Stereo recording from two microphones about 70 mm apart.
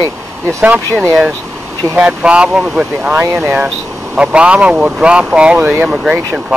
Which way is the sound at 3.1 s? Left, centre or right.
Right.